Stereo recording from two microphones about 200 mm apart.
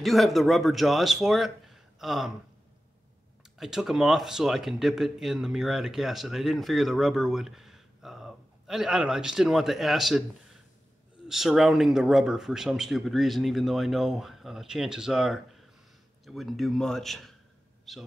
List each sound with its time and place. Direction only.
0.0 s speech: centre (ahead or behind)
3.5 s speech: centre (ahead or behind)